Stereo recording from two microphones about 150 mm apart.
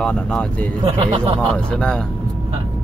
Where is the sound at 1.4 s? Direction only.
5° left (ahead or behind).